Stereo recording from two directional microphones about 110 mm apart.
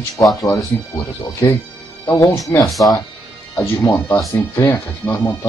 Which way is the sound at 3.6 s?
25° left (ahead or behind).